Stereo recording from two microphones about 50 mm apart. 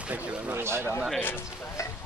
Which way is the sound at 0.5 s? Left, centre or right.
Right.